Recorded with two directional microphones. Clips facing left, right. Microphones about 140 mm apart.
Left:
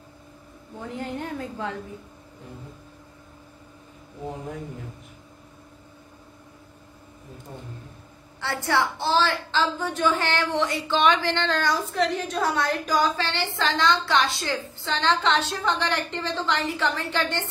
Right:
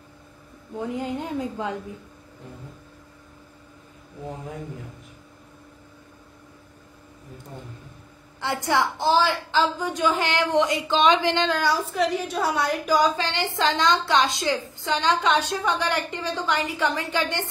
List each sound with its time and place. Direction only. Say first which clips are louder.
0.7 s a woman's voice: right 4 dB; 15° right (ahead or behind)
8.4 s a woman's voice: right 1 dB; 15° right (ahead or behind)